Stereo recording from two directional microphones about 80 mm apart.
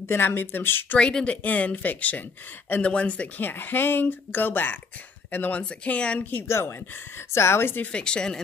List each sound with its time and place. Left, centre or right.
0.1 s speech: left
0.9 s speech: centre
6.4 s a woman's voice: left
7.9 s speech: centre